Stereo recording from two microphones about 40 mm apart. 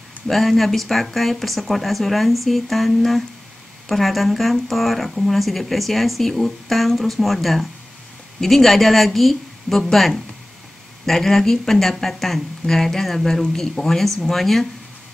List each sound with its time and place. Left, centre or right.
0.3 s speech: centre